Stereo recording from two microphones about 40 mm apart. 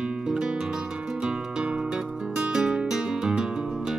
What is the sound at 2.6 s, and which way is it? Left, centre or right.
Guitar, right.